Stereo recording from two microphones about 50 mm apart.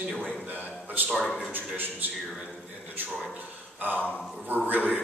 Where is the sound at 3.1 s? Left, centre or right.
Centre.